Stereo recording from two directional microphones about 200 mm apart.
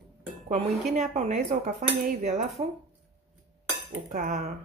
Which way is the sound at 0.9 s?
35° right (ahead or behind).